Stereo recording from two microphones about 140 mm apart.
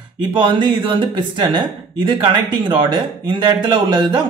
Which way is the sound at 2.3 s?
35° right (ahead or behind).